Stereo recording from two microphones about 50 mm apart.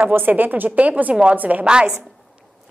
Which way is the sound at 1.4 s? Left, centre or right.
Right.